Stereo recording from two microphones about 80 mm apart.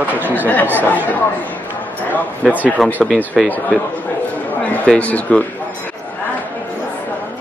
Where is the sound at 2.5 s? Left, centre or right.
Centre.